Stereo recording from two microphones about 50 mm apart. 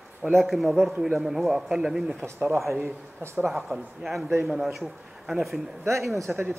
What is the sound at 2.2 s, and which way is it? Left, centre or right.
Speech, right.